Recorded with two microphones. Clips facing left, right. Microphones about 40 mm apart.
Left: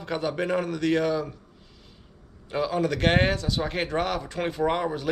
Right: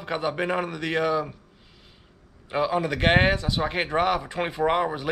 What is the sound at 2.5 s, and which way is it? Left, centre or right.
A man's voice, centre.